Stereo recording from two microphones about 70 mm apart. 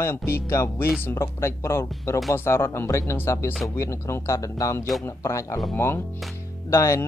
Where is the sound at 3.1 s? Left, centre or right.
Left.